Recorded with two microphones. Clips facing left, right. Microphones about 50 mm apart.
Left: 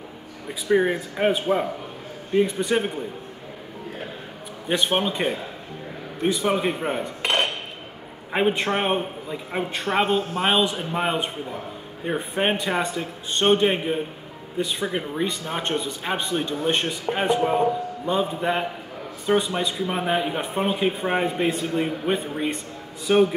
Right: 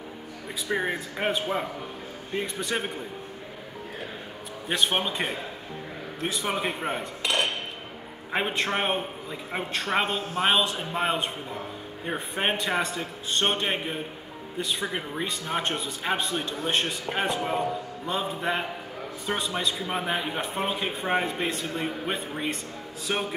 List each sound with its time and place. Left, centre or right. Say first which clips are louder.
0.7 s a man's voice: left 8 dB; centre
4.6 s a man's voice: left 3 dB; centre
7.2 s dishes: left 3 dB; left
8.3 s a man's voice: left 5 dB; centre
17.4 s speech: left 7 dB; centre
18.0 s a man's voice: left 5 dB; centre
22.0 s a man's voice: left 5 dB; centre